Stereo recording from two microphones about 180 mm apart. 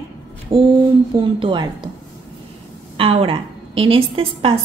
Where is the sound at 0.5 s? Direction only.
25° right (ahead or behind).